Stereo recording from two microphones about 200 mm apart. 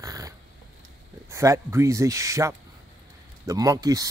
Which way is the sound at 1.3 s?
15° right (ahead or behind).